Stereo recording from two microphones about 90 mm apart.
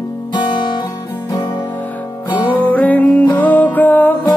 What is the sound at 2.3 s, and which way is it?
Music, 60° left (ahead or behind).